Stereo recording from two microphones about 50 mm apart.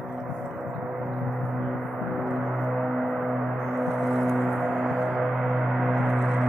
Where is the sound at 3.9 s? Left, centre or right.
Centre.